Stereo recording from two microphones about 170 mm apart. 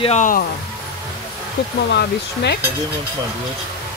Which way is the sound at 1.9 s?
80° left.